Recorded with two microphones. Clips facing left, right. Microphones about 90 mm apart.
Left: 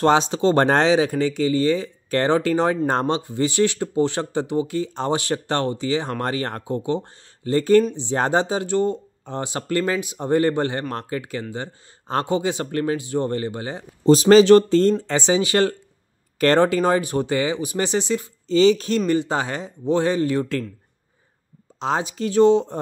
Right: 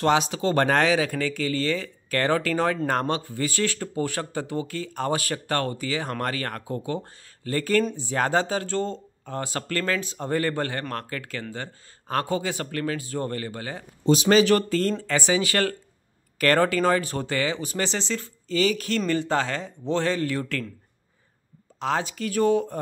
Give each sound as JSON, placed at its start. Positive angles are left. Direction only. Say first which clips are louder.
{"t": 0.0, "sound": "speech", "louder": "left 5 dB", "side_deg": 30}
{"t": 14.0, "sound": "speech", "louder": "left 7 dB", "side_deg": 35}
{"t": 18.5, "sound": "speech", "louder": "left 7 dB", "side_deg": 25}
{"t": 21.7, "sound": "speech", "louder": "left 3 dB", "side_deg": 20}